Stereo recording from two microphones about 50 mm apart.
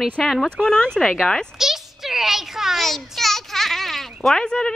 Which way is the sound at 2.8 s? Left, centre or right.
Centre.